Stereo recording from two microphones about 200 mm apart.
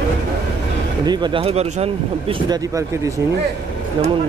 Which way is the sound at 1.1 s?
20° right (ahead or behind).